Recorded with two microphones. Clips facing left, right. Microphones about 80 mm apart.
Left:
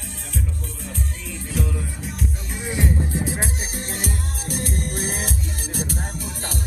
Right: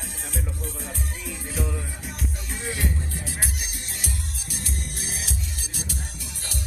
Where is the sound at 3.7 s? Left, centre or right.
Left.